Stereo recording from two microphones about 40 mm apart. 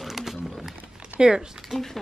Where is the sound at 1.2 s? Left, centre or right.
Centre.